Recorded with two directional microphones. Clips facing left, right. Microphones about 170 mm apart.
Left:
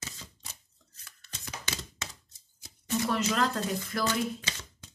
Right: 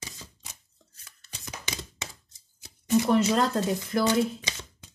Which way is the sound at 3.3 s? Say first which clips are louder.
Right 4 dB; 25° right (ahead or behind).